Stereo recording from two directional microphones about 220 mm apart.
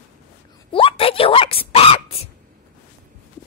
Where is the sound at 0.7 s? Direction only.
25° left (ahead or behind).